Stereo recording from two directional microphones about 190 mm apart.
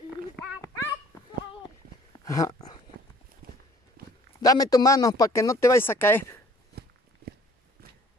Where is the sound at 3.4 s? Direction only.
50° right (ahead or behind).